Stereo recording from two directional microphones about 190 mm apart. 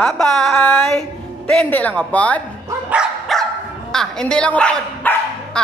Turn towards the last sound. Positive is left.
turn(degrees=5)  # may be behind; listen again after turning